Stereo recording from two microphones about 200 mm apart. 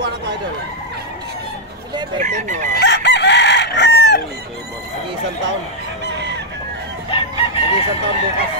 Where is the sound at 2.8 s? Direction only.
60° left (ahead or behind).